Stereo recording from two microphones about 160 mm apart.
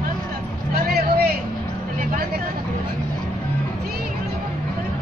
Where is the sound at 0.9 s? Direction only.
70° right (ahead or behind).